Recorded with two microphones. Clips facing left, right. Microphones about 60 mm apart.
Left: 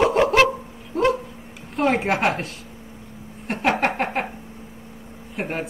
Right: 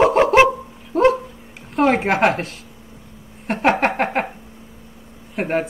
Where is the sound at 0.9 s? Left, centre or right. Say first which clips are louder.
Right 5 dB; right.